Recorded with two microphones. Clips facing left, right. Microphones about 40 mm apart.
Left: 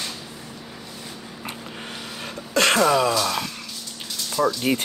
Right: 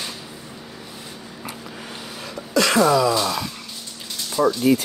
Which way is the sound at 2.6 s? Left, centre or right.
Left.